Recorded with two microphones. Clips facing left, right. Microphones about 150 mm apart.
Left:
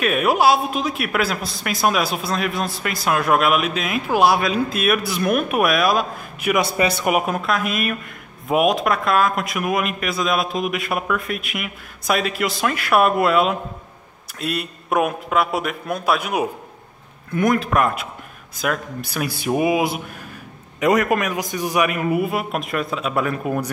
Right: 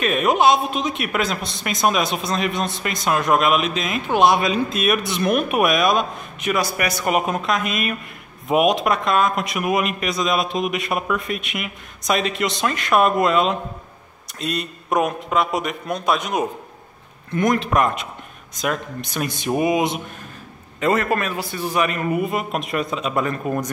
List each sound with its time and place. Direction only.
0.0 s speech: 5° left (ahead or behind)
6.5 s a man's voice: 25° left (ahead or behind)
7.1 s a man's voice: 5° left (ahead or behind)